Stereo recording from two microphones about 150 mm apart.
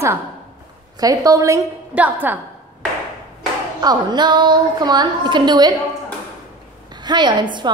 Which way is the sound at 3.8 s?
25° right (ahead or behind).